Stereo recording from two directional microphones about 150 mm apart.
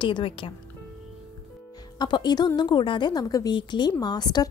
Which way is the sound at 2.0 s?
30° left (ahead or behind).